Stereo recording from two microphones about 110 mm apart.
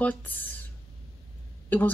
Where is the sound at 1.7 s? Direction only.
15° left (ahead or behind).